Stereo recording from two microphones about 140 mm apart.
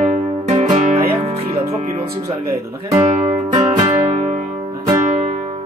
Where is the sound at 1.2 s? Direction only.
45° right (ahead or behind).